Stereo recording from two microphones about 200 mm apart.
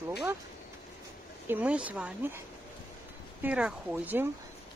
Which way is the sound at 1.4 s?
10° right (ahead or behind).